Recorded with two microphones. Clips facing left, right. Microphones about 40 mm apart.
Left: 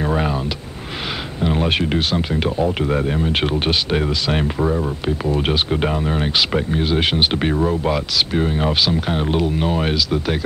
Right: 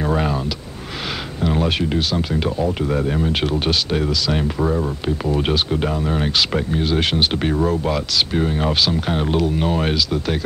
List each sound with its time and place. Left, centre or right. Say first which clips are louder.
0.0 s vehicle: even; centre
1.4 s speech: left 1 dB; left
4.6 s speech: even; centre